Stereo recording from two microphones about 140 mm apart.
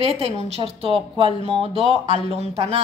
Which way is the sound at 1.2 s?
40° right (ahead or behind).